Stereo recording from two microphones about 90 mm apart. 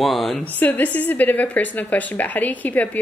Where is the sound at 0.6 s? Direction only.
20° left (ahead or behind).